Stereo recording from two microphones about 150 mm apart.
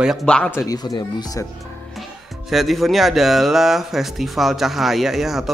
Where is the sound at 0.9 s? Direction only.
25° left (ahead or behind).